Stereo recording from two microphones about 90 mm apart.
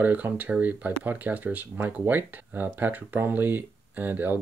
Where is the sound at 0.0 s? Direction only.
20° right (ahead or behind).